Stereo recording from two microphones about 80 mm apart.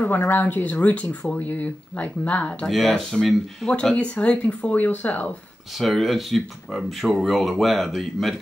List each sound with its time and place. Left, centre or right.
0.0 s speech: left
2.6 s speech: centre
3.9 s speech: centre
5.8 s speech: centre